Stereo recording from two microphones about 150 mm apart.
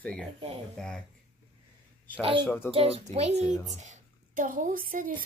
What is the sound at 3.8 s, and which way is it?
Speech, 55° right (ahead or behind).